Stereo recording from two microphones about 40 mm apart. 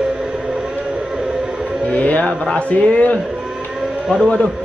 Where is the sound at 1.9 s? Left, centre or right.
Left.